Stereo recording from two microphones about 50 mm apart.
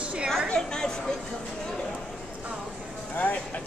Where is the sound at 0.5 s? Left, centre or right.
Centre.